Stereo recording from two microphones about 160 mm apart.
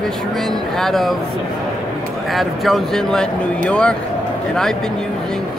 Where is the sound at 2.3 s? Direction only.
Centre (ahead or behind).